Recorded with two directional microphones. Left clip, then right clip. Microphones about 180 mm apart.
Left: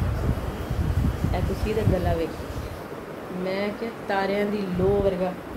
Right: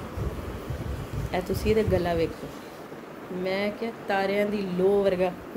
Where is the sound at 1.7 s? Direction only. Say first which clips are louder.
Right 4 dB; 70° right (ahead or behind).